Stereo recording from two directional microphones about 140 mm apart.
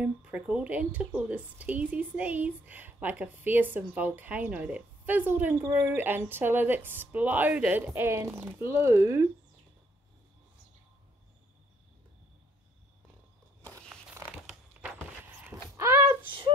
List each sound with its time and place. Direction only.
0.0 s speech: 10° right (ahead or behind)
13.8 s a sound: 15° right (ahead or behind)
16.3 s speech: 35° right (ahead or behind)